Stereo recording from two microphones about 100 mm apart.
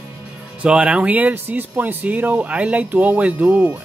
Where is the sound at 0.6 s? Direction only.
10° right (ahead or behind).